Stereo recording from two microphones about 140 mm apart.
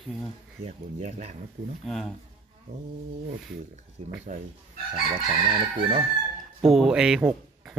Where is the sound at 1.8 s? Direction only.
Centre (ahead or behind).